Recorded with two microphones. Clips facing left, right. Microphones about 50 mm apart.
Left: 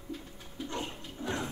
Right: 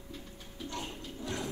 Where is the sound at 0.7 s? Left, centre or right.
Left.